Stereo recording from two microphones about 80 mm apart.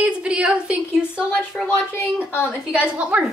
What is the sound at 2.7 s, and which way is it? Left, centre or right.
Speech, centre.